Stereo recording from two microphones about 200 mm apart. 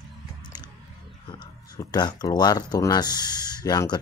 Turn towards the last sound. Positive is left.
turn(degrees=20)  # may be behind; listen again after turning